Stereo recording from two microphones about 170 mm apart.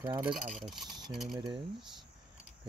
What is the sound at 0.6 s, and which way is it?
Speech, centre (ahead or behind).